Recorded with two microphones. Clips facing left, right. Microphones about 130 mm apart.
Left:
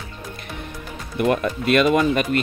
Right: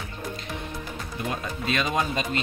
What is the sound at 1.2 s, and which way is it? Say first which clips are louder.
Speech: left 12 dB; 70° left (ahead or behind).